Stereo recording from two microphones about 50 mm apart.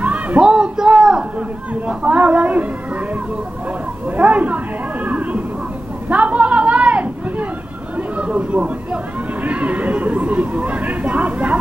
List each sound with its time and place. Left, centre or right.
0.0 s music: right
0.4 s a sound: centre
1.7 s speech: right
4.2 s speech: right
6.0 s a sound: right
8.2 s speech: right